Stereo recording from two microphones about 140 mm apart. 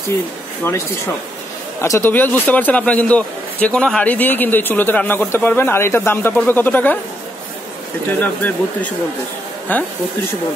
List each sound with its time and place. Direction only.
0.7 s a man's voice: 20° left (ahead or behind)
8.2 s a man's voice: 10° left (ahead or behind)